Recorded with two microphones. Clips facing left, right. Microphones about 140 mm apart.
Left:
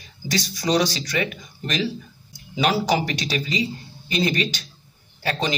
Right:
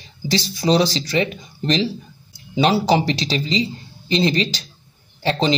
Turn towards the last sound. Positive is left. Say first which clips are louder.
# right 6 dB
turn(degrees=-30)  # may be behind; listen again after turning